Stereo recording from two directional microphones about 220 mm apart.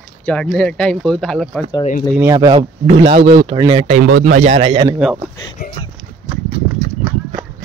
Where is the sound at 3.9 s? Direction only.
40° right (ahead or behind); by 4.9 s 25° right (ahead or behind).